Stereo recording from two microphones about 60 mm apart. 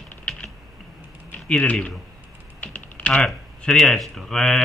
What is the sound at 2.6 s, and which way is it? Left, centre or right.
Typing, left.